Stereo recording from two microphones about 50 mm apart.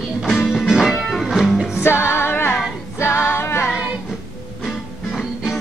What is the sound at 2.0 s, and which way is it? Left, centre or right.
Music, left.